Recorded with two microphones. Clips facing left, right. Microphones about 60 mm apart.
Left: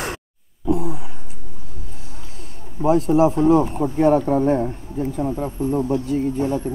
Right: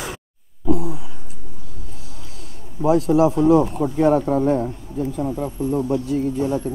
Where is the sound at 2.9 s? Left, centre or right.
Left.